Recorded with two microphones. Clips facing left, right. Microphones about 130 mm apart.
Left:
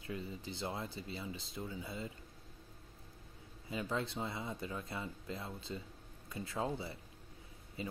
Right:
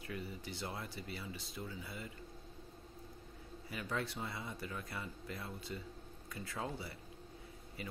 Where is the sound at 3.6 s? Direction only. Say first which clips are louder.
Left 3 dB; 25° left (ahead or behind).